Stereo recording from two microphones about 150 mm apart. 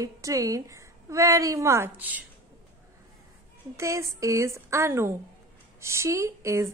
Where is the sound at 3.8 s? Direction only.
20° right (ahead or behind).